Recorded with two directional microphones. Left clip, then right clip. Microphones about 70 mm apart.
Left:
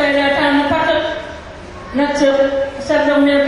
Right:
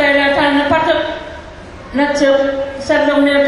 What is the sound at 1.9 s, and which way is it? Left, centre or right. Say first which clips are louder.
A man's voice: right 1 dB; right.